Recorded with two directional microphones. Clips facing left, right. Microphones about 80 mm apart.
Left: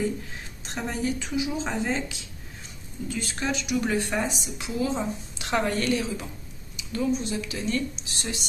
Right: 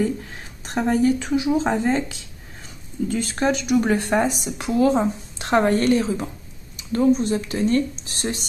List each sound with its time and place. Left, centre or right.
0.7 s speech: right
5.5 s a woman's voice: right